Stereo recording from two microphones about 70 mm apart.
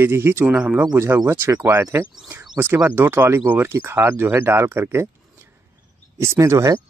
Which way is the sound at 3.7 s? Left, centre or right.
Right.